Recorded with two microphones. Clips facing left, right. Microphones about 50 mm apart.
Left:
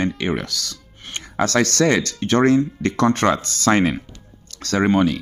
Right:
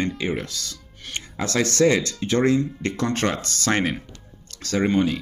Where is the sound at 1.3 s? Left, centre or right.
Left.